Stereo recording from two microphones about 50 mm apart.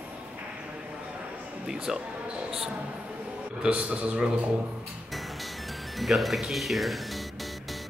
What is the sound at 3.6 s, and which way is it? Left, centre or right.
Speech, right.